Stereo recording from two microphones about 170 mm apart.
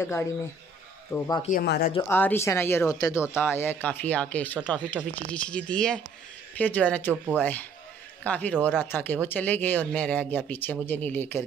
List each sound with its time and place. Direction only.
1.1 s speech: 15° left (ahead or behind)
1.5 s speech: 65° left (ahead or behind)
2.0 s speech: 10° left (ahead or behind)